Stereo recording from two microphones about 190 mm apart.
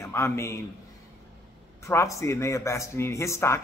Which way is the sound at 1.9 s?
15° left (ahead or behind).